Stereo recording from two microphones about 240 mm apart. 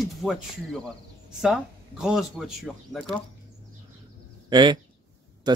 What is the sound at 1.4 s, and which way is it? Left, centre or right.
Speech, centre.